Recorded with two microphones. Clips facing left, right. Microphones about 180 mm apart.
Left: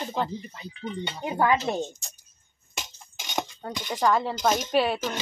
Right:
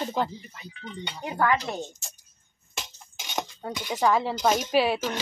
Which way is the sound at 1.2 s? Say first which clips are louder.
Left 2 dB; 20° left (ahead or behind).